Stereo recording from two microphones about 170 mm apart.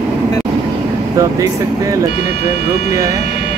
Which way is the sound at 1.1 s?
20° right (ahead or behind).